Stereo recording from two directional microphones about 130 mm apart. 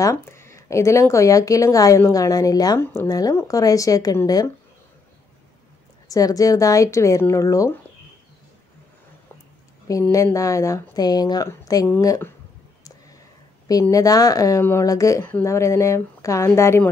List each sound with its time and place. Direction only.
0.0 s speech: 20° left (ahead or behind)
2.8 s speech: 15° left (ahead or behind)
3.1 s speech: 25° left (ahead or behind)
6.0 s speech: 25° left (ahead or behind)
10.1 s speech: 25° left (ahead or behind)
13.7 s speech: 25° left (ahead or behind)